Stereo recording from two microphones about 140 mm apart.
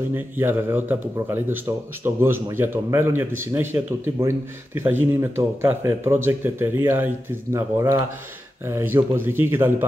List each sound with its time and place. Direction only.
0.1 s speech: 15° right (ahead or behind)